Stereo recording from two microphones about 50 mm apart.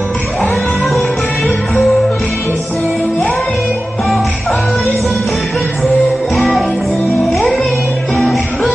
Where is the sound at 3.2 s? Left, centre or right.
Left.